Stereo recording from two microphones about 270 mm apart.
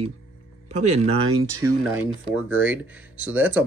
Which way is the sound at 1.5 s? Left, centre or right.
Centre.